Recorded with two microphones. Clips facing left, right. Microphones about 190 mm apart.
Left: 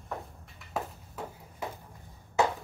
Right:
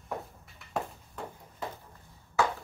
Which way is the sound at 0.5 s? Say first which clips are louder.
Right 1 dB; 5° left (ahead or behind).